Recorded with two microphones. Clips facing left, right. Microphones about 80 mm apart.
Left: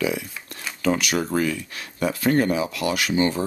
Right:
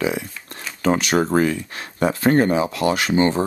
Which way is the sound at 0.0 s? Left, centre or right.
Right.